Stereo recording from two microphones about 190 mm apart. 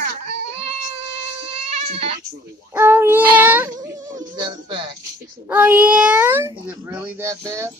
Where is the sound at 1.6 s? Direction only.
35° right (ahead or behind).